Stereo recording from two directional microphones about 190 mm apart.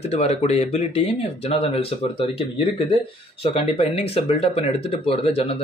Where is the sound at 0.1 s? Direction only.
35° left (ahead or behind).